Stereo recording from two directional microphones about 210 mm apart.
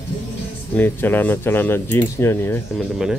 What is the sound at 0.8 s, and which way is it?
Speech, 10° left (ahead or behind).